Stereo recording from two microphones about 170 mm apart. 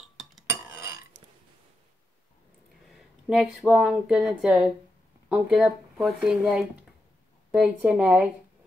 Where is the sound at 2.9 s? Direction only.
5° right (ahead or behind).